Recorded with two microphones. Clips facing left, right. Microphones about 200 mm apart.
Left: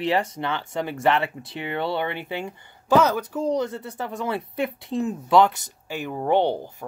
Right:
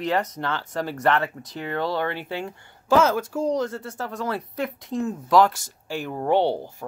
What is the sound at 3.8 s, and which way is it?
Speech, 20° left (ahead or behind).